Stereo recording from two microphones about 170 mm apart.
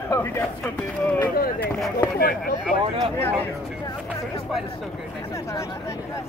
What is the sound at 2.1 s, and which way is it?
Speech, 60° left (ahead or behind).